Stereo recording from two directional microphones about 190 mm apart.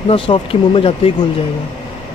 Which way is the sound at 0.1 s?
30° left (ahead or behind).